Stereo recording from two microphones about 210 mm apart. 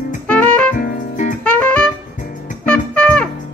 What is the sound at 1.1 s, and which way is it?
Music, 35° left (ahead or behind).